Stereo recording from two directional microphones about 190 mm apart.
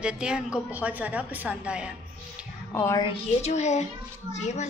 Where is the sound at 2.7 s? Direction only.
15° left (ahead or behind).